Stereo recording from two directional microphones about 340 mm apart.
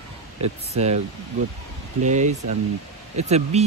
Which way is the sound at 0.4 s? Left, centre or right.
Centre.